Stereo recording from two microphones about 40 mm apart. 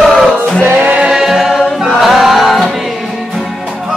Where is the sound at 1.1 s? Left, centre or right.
Centre.